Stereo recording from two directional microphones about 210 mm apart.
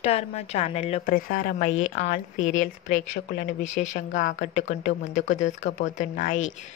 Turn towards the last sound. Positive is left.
turn(degrees=35)  # may be behind; listen again after turning